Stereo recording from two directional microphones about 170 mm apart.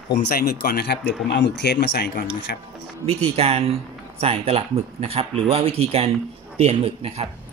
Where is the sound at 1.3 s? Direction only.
80° left; by 2.6 s 65° left (ahead or behind).